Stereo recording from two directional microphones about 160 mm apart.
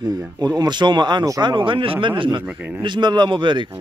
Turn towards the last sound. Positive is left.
turn(degrees=-30)  # may be behind; listen again after turning